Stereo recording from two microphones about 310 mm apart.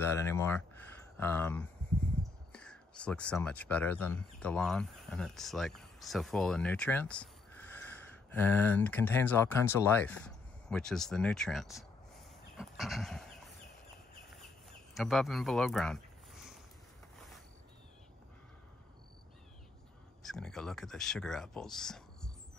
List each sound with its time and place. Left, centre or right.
0.0 s speech: centre
12.5 s a sound: centre
15.0 s speech: centre
20.2 s speech: centre